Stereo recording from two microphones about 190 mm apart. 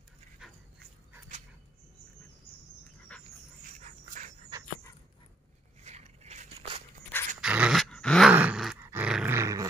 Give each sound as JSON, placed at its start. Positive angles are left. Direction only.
{"t": 3.1, "sound": "dog", "side_deg": 5}
{"t": 3.8, "sound": "dog", "side_deg": -40}
{"t": 5.9, "sound": "a sound", "side_deg": -35}
{"t": 7.1, "sound": "dog", "side_deg": 10}
{"t": 7.4, "sound": "groan", "side_deg": -5}
{"t": 8.3, "sound": "dog", "side_deg": -5}